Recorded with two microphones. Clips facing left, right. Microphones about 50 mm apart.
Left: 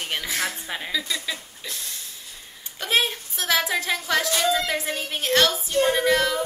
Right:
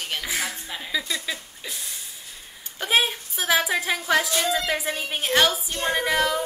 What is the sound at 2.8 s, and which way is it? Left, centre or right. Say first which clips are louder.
A woman's voice: right 1 dB; centre.